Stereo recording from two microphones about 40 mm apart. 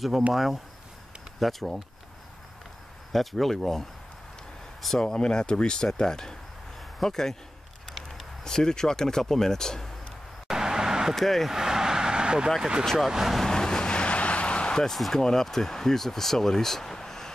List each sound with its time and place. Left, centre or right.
0.3 s speech: centre
3.1 s speech: centre
5.0 s speech: left
8.5 s speech: centre
10.5 s vehicle: centre
11.1 s speech: centre
11.5 s vehicle: centre
12.9 s speech: centre
13.4 s vehicle: centre
14.9 s speech: centre